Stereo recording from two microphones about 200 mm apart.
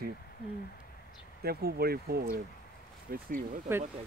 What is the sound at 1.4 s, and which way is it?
Speech, 50° right (ahead or behind).